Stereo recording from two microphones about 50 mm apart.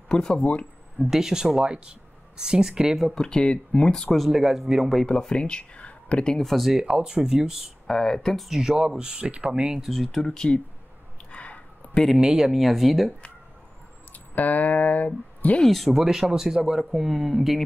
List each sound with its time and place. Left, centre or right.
0.1 s speech: centre
1.1 s speech: centre
3.2 s speech: centre
4.3 s speech: centre
5.0 s speech: centre
6.3 s speech: centre
6.8 s speech: centre
7.8 s speech: centre
8.5 s speech: centre
9.8 s speech: centre
11.3 s a sound: left
12.2 s speech: centre
14.1 s speech: left
15.6 s speech: centre